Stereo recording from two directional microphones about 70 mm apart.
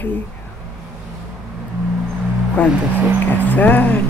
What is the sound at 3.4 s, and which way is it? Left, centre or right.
Speech, left.